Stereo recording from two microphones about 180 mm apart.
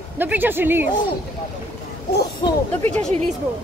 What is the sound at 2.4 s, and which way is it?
Speech, 25° left (ahead or behind).